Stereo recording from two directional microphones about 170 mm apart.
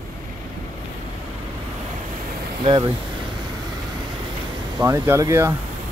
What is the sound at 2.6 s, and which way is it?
Speech, 25° right (ahead or behind).